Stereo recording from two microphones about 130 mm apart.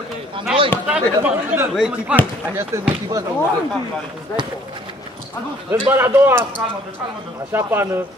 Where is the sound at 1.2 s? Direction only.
15° right (ahead or behind).